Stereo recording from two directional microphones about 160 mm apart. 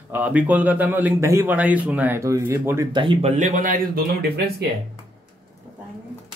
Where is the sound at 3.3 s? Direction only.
50° right (ahead or behind).